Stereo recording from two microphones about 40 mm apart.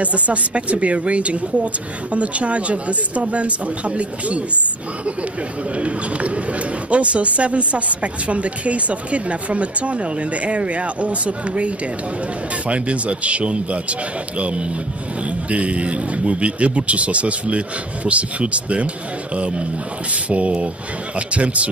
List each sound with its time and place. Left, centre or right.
0.0 s a woman's voice: right
5.8 s a woman's voice: right
15.5 s a woman's voice: right